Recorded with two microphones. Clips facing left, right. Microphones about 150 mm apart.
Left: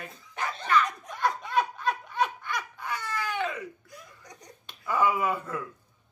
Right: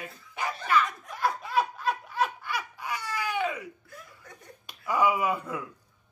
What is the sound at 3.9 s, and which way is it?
Laughter, 15° left (ahead or behind).